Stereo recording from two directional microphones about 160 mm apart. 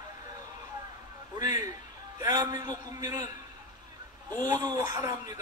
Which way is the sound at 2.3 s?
25° right (ahead or behind).